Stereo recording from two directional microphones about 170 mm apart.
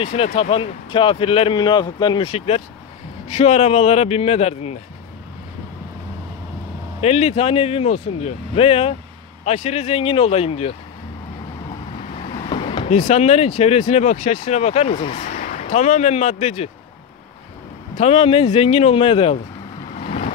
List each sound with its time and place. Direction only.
0.0 s speech: 35° left (ahead or behind)
7.0 s speech: 40° left (ahead or behind)
12.4 s a sound: 35° left (ahead or behind)
13.6 s speech: 40° left (ahead or behind)
17.9 s speech: 35° left (ahead or behind)
20.0 s vehicle: 45° left (ahead or behind)